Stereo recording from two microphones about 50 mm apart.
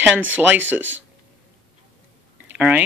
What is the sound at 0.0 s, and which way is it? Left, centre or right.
Speech, right.